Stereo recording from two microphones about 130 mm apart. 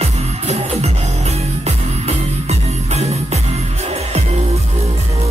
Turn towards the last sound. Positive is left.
turn(degrees=-55)  # may be behind; listen again after turning